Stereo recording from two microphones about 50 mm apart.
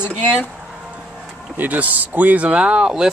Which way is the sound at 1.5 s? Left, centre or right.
Right.